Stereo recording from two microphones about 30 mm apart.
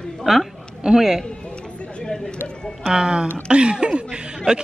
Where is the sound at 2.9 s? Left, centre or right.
Right.